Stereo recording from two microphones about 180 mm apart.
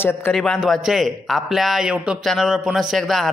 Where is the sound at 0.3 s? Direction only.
Centre (ahead or behind).